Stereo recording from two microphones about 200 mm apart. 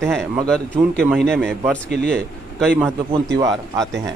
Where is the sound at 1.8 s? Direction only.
55° right (ahead or behind).